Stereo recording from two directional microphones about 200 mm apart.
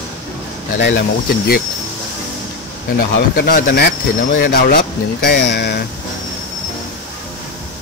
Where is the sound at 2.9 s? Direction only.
50° left (ahead or behind).